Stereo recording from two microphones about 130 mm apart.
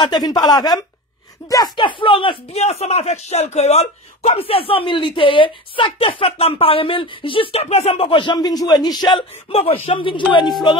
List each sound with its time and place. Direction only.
0.0 s speech: 35° left (ahead or behind)
9.5 s speech: 50° left (ahead or behind)